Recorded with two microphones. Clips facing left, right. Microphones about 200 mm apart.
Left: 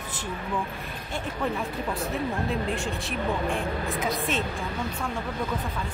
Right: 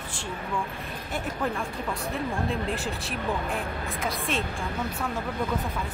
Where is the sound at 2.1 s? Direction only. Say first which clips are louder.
Even; centre (ahead or behind).